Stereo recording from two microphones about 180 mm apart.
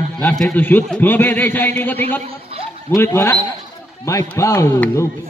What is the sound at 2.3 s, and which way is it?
Chuckle, 30° right (ahead or behind).